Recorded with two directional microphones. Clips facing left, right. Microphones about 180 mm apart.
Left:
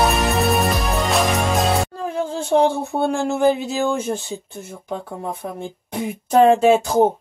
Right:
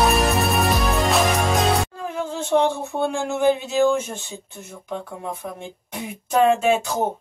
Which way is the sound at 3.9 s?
35° left (ahead or behind).